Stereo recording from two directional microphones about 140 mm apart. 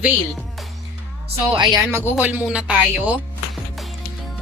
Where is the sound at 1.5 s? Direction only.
35° right (ahead or behind).